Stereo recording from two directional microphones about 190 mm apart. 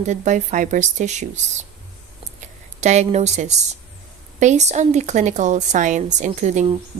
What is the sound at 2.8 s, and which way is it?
A woman's voice, 35° right (ahead or behind).